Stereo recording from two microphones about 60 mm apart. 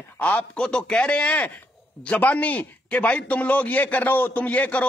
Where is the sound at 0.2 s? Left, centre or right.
Left.